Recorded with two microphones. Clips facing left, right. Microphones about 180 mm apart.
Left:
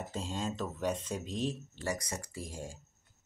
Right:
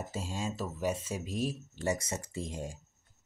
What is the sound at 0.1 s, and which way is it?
Speech, 10° right (ahead or behind).